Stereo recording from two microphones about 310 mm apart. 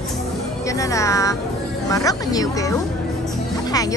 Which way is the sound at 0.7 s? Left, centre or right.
Centre.